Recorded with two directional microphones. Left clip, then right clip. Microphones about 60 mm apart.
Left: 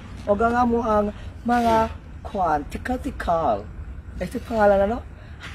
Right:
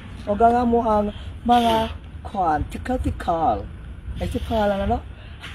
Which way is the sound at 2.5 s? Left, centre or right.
Left.